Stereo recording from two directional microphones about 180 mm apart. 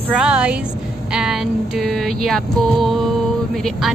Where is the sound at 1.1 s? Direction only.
5° right (ahead or behind).